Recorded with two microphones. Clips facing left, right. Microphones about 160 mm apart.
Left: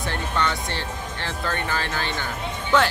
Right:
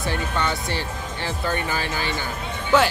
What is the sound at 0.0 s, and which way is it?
Speech, 10° right (ahead or behind).